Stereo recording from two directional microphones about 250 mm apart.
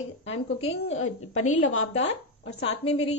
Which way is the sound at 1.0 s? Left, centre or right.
Left.